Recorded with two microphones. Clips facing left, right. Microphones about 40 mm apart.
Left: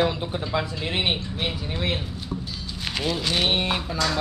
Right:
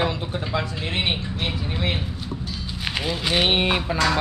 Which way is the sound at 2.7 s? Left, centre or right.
Centre.